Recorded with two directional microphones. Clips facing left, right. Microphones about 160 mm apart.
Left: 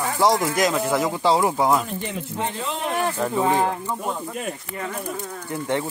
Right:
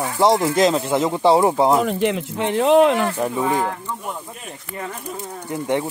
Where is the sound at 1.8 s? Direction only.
90° right.